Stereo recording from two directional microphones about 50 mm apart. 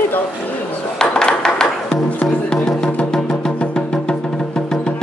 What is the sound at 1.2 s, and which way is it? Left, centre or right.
Music, centre.